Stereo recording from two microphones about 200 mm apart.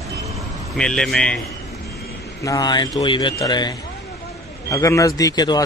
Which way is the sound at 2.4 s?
20° left (ahead or behind).